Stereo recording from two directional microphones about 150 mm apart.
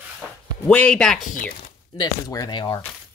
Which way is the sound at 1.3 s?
60° left (ahead or behind).